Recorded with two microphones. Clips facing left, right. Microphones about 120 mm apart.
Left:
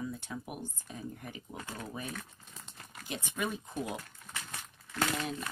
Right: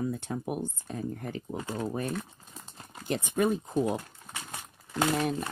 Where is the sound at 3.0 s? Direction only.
50° right (ahead or behind).